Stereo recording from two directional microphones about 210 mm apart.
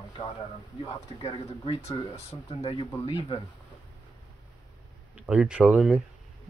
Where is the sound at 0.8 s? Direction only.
25° left (ahead or behind).